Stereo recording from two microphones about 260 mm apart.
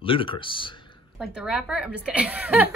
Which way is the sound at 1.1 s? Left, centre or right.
Centre.